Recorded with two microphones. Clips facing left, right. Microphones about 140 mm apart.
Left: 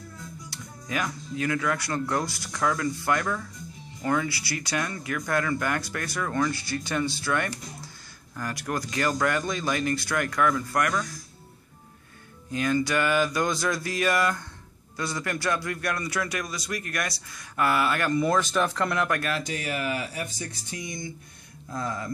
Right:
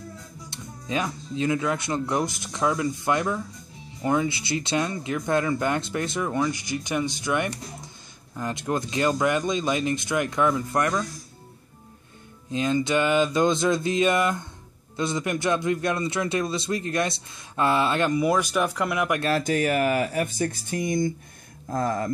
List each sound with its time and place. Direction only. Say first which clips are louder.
0.5 s speech: right 4 dB; 25° right (ahead or behind)
12.4 s speech: right 2 dB; 20° right (ahead or behind)
18.1 s speech: right 1 dB; 10° right (ahead or behind)
19.3 s speech: right 8 dB; 50° right (ahead or behind)